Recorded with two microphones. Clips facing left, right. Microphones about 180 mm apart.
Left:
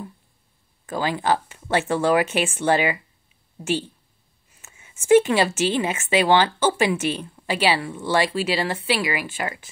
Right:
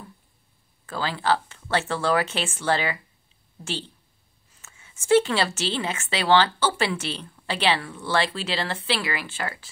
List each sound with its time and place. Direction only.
0.8 s a woman's voice: 15° left (ahead or behind)